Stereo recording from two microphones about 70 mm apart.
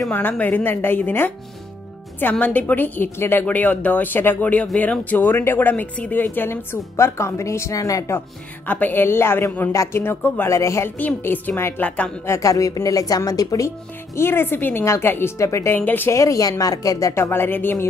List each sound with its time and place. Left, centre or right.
0.1 s a woman's voice: left
2.4 s a woman's voice: left
7.7 s a woman's voice: left
8.6 s a woman's voice: left
9.7 s speech: left
10.0 s a woman's voice: left
10.5 s speech: left
11.0 s a woman's voice: left
12.3 s a woman's voice: left
14.1 s a woman's voice: left
15.3 s speech: left
15.7 s a woman's voice: left
16.1 s a woman's voice: left
17.1 s a woman's voice: left